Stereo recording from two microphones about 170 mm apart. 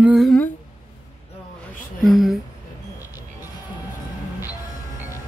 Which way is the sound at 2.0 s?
Centre (ahead or behind).